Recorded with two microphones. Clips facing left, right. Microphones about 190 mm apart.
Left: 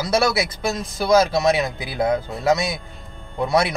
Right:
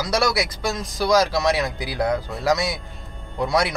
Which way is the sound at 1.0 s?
25° left (ahead or behind).